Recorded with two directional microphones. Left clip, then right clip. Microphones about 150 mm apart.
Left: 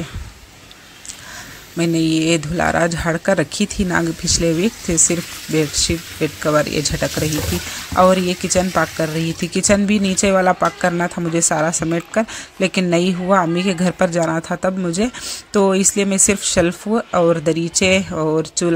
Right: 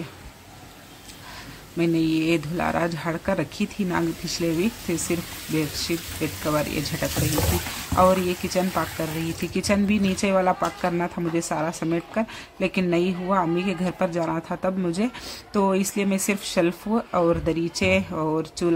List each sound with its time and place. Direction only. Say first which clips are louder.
1.8 s speech: left 5 dB; 30° left (ahead or behind)